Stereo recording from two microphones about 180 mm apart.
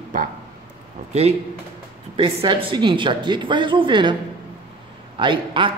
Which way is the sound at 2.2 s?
30° right (ahead or behind).